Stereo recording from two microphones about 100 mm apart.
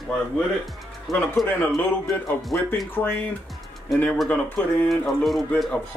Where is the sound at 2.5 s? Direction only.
20° left (ahead or behind).